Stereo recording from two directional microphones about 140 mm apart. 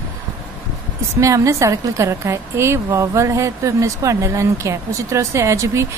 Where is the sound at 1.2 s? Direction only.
20° right (ahead or behind).